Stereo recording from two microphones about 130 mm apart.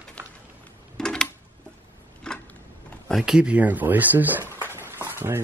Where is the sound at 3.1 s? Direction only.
5° right (ahead or behind).